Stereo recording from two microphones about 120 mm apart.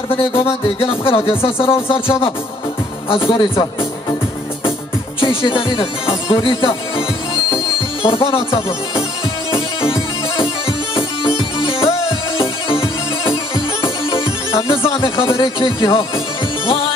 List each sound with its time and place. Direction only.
0.3 s music: 50° left (ahead or behind)
5.2 s music: 45° left (ahead or behind)
7.5 s speech: 45° left (ahead or behind)
9.5 s music: 50° left (ahead or behind)
14.7 s speech: 45° left (ahead or behind)